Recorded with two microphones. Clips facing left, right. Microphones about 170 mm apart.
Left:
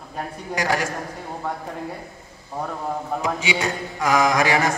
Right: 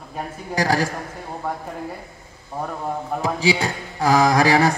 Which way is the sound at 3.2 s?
35° right (ahead or behind).